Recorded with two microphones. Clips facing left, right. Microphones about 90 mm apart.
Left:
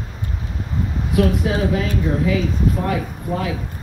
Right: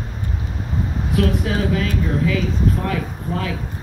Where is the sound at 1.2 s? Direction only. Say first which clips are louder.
Left 2 dB; 20° left (ahead or behind).